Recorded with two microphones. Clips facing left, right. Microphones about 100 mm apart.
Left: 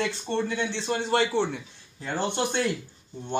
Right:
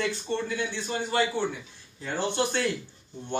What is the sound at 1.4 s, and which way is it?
Speech, 30° left (ahead or behind).